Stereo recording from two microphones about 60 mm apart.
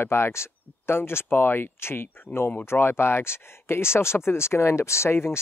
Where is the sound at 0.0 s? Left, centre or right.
Left.